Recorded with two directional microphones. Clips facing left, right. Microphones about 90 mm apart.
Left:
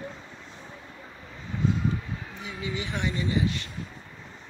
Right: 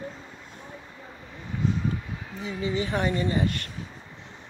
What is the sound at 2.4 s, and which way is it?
Speech, 35° right (ahead or behind).